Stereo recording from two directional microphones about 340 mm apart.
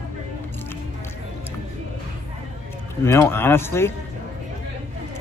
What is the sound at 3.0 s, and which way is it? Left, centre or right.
Speech, centre.